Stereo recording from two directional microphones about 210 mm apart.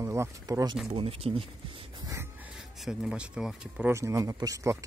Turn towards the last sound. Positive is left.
turn(degrees=-15)  # may be behind; listen again after turning